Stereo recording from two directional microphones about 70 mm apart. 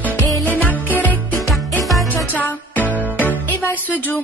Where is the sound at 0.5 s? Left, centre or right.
Left.